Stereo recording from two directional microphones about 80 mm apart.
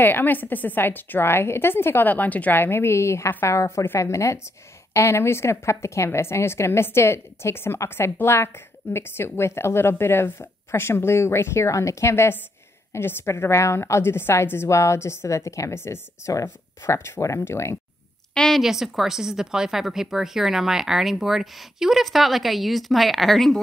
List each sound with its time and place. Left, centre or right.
0.0 s a woman's voice: left
18.3 s a sound: centre
18.6 s speech: centre